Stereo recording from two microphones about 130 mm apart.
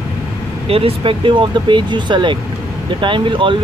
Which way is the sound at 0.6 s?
45° right (ahead or behind).